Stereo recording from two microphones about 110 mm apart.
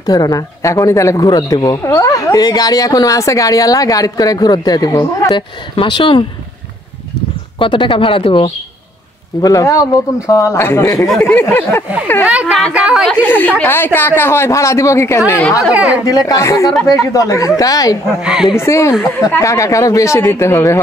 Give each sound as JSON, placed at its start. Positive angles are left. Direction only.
{"t": 0.0, "sound": "speech", "side_deg": 35}
{"t": 5.3, "sound": "speech", "side_deg": 45}
{"t": 7.5, "sound": "speech", "side_deg": 50}
{"t": 9.4, "sound": "speech", "side_deg": 30}
{"t": 11.1, "sound": "speech", "side_deg": 5}
{"t": 11.3, "sound": "speech", "side_deg": 20}
{"t": 12.7, "sound": "speech", "side_deg": -5}
{"t": 13.1, "sound": "a woman's voice", "side_deg": 15}
{"t": 15.7, "sound": "speech", "side_deg": -10}
{"t": 16.1, "sound": "speech", "side_deg": 35}
{"t": 18.2, "sound": "speech", "side_deg": -5}
{"t": 18.6, "sound": "speech", "side_deg": 25}